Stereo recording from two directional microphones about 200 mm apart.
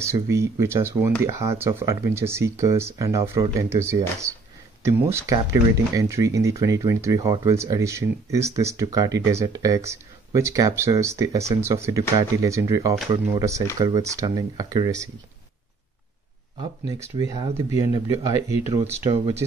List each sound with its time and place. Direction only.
0.0 s speech: 15° right (ahead or behind)
16.8 s speech: 20° right (ahead or behind)
18.9 s speech: 25° right (ahead or behind)